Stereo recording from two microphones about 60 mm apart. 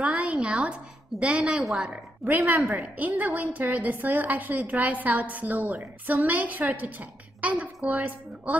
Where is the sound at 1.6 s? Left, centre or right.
Centre.